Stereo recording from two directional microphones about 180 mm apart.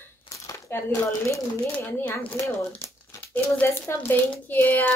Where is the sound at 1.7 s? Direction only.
10° left (ahead or behind).